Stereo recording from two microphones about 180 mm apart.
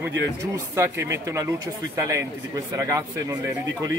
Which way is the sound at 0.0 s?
10° right (ahead or behind).